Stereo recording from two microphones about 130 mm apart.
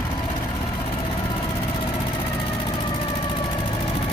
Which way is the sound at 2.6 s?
40° left (ahead or behind).